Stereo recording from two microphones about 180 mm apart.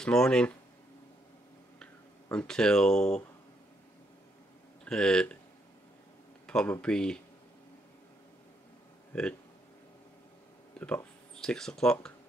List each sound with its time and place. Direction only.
0.0 s speech: 5° left (ahead or behind)
1.8 s speech: 5° left (ahead or behind)
4.8 s speech: 5° left (ahead or behind)
6.4 s speech: 5° left (ahead or behind)
10.8 s speech: 5° left (ahead or behind)